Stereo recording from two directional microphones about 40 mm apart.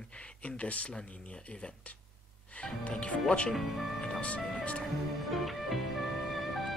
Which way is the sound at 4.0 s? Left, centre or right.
Left.